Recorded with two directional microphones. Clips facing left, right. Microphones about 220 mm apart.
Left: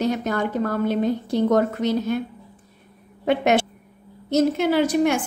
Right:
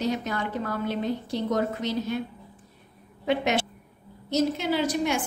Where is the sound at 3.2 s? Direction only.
55° left (ahead or behind).